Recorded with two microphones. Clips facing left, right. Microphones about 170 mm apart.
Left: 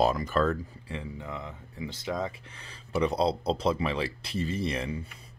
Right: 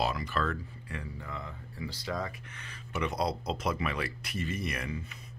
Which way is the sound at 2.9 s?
35° left (ahead or behind).